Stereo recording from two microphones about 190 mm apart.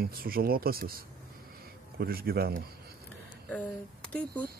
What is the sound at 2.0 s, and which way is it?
Speech, 55° right (ahead or behind).